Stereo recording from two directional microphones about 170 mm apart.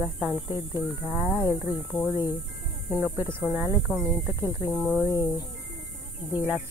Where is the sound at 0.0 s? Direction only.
10° right (ahead or behind).